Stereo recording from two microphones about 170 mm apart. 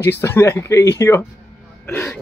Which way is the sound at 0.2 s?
15° left (ahead or behind).